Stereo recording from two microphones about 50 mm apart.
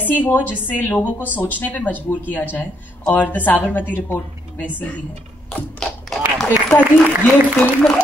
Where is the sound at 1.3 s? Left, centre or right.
Left.